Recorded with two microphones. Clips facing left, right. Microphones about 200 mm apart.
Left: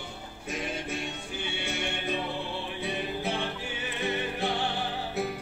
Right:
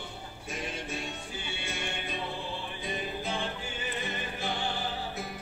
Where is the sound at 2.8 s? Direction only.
70° left (ahead or behind).